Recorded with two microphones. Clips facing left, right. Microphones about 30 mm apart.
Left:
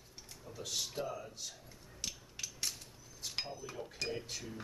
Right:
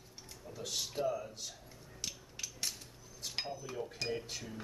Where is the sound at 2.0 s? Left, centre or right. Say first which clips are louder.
Even; centre.